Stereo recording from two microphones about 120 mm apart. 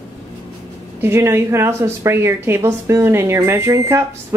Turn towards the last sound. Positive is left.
turn(degrees=-20)  # may be behind; listen again after turning